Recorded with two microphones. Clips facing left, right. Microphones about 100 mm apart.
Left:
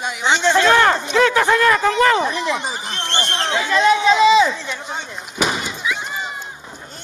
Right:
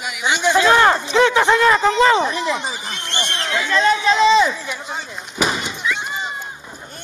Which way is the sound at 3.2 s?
35° left (ahead or behind).